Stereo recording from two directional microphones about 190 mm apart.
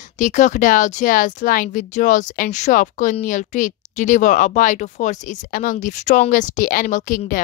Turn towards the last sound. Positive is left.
turn(degrees=45)  # may be behind; listen again after turning